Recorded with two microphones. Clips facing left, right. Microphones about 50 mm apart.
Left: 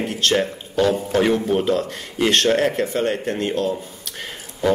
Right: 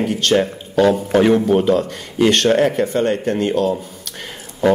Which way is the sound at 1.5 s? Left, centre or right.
Centre.